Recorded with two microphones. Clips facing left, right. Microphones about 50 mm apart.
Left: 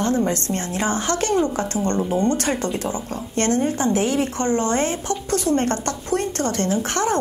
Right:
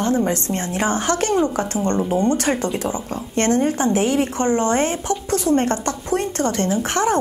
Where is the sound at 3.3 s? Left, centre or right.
Right.